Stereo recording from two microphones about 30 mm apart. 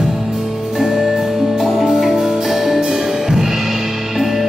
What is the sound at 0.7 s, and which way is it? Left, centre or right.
Music, centre.